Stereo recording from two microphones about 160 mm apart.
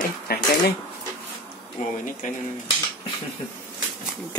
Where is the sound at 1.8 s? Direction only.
55° left (ahead or behind).